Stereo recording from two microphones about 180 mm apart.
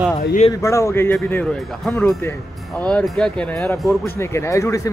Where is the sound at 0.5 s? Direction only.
15° left (ahead or behind); by 4.0 s centre (ahead or behind).